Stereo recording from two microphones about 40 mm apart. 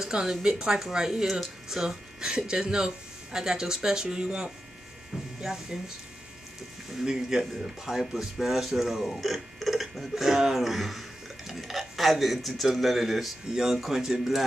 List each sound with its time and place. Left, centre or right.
0.0 s speech: centre
2.1 s speech: centre
5.4 s speech: centre
7.1 s speech: centre
8.1 s speech: centre
13.5 s speech: centre